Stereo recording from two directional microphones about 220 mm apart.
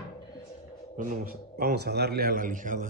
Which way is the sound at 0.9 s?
40° right (ahead or behind).